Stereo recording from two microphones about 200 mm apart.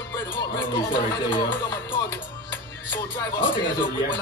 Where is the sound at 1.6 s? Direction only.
10° left (ahead or behind).